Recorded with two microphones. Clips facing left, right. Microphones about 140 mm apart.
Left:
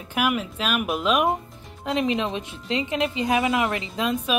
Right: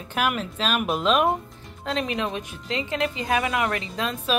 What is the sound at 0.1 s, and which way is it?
Speech, 10° left (ahead or behind).